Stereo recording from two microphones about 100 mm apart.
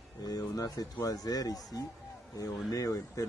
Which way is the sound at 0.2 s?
40° left (ahead or behind).